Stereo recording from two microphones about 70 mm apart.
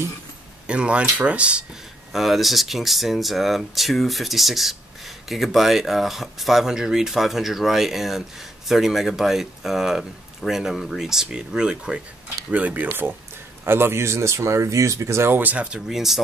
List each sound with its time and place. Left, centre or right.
0.7 s speech: centre
2.1 s speech: centre; by 15.3 s right
15.3 s speech: right
15.9 s speech: centre